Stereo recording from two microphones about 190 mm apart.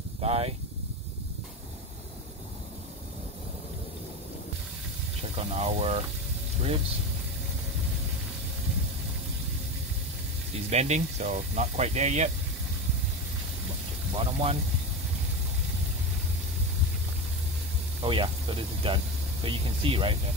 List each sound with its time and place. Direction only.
0.2 s speech: 30° right (ahead or behind)
5.4 s speech: 35° right (ahead or behind)
10.7 s speech: 35° right (ahead or behind)
14.1 s speech: 30° right (ahead or behind)
18.0 s speech: 25° right (ahead or behind)